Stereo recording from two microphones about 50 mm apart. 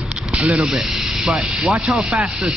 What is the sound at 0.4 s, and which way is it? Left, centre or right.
Speech, right.